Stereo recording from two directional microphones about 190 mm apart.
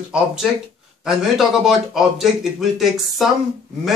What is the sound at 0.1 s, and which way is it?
Speech, 5° right (ahead or behind).